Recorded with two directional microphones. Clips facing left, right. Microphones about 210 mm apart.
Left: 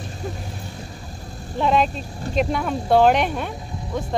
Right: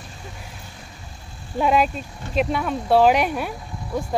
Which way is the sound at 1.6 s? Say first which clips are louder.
Even; 10° right (ahead or behind).